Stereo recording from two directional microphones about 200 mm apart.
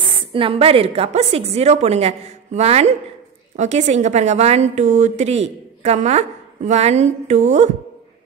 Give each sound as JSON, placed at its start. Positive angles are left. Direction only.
{"t": 0.3, "sound": "a woman's voice", "side_deg": -25}